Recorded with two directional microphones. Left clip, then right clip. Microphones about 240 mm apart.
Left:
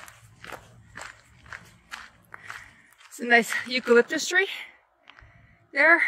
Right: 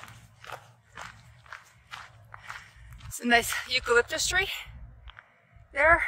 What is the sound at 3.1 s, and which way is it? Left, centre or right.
Speech, centre.